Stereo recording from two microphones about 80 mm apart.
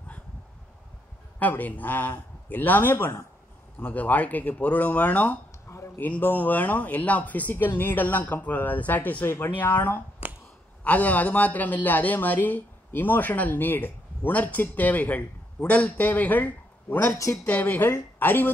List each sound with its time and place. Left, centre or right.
1.4 s a man's voice: left
17.1 s speech: left
17.5 s a man's voice: left